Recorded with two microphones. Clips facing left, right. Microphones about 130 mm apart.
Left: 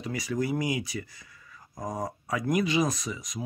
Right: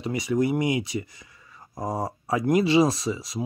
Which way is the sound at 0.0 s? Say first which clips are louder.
Right 6 dB; 20° right (ahead or behind).